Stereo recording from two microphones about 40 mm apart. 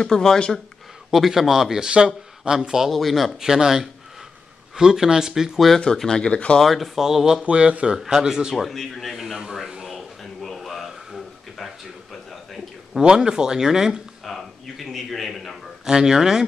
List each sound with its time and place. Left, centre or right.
0.0 s speech: centre
1.1 s speech: centre
1.9 s speech: right
2.9 s a man's voice: centre
3.3 s speech: centre
5.9 s speech: centre
6.6 s speech: centre
7.4 s speech: right
8.5 s a man's voice: centre
9.1 s speech: centre
9.8 s a sound: centre
13.0 s speech: centre
14.2 s speech: centre
15.8 s speech: centre